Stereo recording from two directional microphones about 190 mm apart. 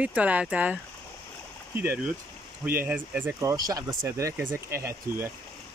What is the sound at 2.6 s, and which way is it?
Speech, 10° right (ahead or behind).